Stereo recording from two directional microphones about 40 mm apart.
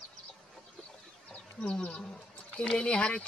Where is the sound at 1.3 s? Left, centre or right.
Left.